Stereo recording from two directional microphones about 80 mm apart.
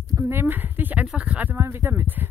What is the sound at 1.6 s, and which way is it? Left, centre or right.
Speech, right.